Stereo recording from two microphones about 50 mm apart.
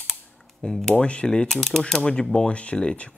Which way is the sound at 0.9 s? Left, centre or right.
Left.